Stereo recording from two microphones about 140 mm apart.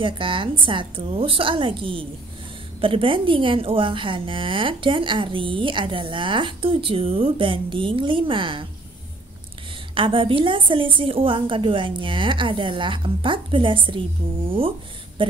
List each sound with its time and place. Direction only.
0.0 s a woman's voice: 35° right (ahead or behind)
9.9 s a woman's voice: 40° right (ahead or behind)